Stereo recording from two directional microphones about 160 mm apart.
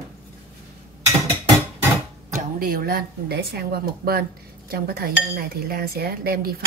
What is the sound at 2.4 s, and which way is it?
Speech, 65° right (ahead or behind).